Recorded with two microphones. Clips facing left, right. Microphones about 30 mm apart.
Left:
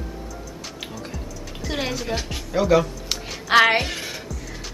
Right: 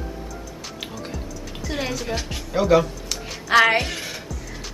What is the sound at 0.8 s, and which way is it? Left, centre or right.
Speech, centre.